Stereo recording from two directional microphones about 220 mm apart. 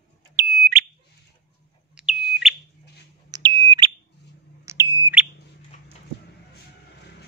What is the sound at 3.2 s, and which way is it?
Smoke detector, 20° right (ahead or behind).